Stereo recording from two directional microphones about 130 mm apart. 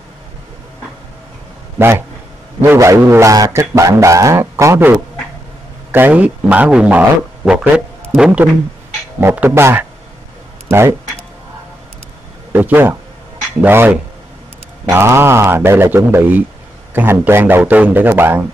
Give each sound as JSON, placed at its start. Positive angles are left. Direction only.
{"t": 1.8, "sound": "a man's voice", "side_deg": -20}
{"t": 9.2, "sound": "a man's voice", "side_deg": -15}
{"t": 12.5, "sound": "a man's voice", "side_deg": -15}